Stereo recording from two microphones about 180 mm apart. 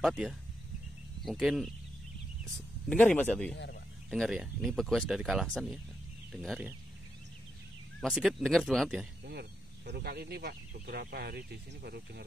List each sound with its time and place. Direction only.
0.0 s speech: 5° right (ahead or behind)
2.9 s speech: 10° left (ahead or behind)
3.5 s speech: 75° left (ahead or behind)
4.1 s speech: centre (ahead or behind)
8.0 s speech: centre (ahead or behind)
9.2 s speech: 60° right (ahead or behind)